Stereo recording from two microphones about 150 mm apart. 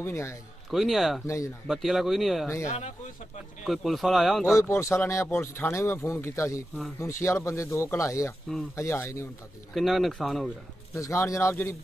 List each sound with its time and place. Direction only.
0.0 s speech: 15° left (ahead or behind)
0.7 s speech: centre (ahead or behind)
1.2 s speech: 20° left (ahead or behind)
1.7 s speech: centre (ahead or behind)
3.6 s speech: centre (ahead or behind)
4.6 s speech: 20° left (ahead or behind)
9.8 s speech: centre (ahead or behind)
11.0 s speech: 20° left (ahead or behind)